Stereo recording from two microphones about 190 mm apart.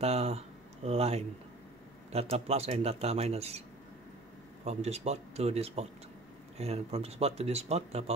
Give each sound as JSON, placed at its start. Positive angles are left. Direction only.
{"t": 0.0, "sound": "speech", "side_deg": -35}
{"t": 4.6, "sound": "speech", "side_deg": -35}